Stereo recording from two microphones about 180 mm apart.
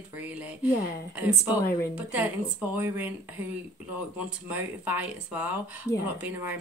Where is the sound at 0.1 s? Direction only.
10° right (ahead or behind).